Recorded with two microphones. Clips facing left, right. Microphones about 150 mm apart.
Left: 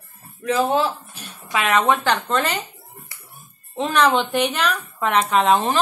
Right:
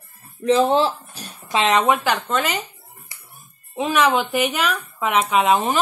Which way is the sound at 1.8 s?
5° right (ahead or behind).